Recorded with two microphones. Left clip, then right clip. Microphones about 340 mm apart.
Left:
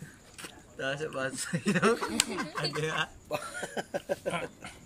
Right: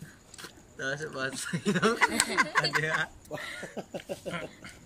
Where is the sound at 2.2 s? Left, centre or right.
Right.